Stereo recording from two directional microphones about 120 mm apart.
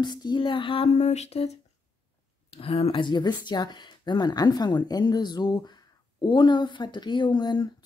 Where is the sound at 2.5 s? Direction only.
55° left (ahead or behind).